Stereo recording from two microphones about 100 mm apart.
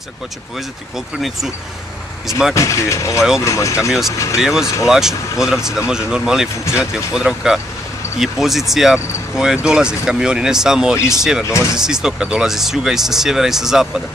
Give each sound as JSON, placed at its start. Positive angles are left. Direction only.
{"t": 0.9, "sound": "speech", "side_deg": -5}
{"t": 2.5, "sound": "speech", "side_deg": 30}
{"t": 3.2, "sound": "speech", "side_deg": -5}
{"t": 3.4, "sound": "speech", "side_deg": 30}
{"t": 4.4, "sound": "speech", "side_deg": -5}
{"t": 11.4, "sound": "speech", "side_deg": 30}
{"t": 11.7, "sound": "speech", "side_deg": -5}